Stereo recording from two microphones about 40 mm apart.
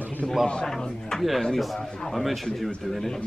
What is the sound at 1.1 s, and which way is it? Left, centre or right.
Speech, centre.